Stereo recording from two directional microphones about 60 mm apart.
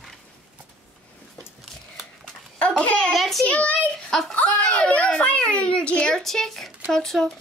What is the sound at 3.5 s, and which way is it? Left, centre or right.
A child's voice, left.